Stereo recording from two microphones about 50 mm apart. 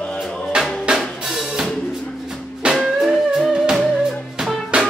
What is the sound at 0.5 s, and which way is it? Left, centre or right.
Drum, centre.